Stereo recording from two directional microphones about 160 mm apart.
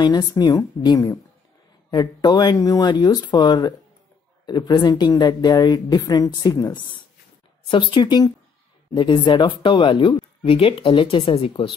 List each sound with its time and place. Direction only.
0.0 s speech: 25° left (ahead or behind)